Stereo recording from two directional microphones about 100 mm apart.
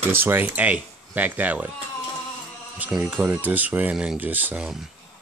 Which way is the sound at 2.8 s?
15° right (ahead or behind).